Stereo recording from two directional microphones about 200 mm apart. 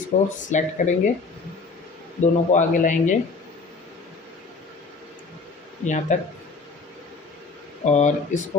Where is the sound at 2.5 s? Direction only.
40° left (ahead or behind).